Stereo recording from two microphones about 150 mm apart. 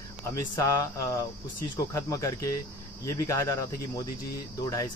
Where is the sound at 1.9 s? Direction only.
20° left (ahead or behind).